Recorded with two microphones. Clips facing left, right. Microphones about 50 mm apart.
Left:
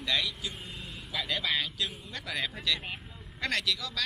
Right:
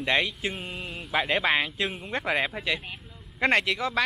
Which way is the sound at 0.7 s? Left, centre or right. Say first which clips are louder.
Right 7 dB; right.